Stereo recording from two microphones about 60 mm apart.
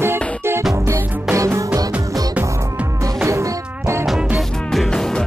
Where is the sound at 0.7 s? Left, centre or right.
Right.